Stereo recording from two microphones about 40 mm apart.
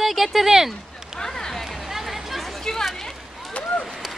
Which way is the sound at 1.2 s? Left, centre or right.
Centre.